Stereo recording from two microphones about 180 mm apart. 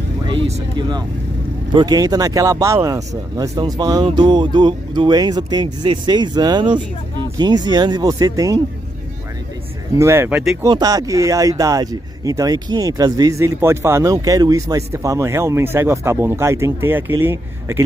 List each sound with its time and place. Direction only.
0.3 s speech: 30° right (ahead or behind)
9.9 s speech: 15° right (ahead or behind)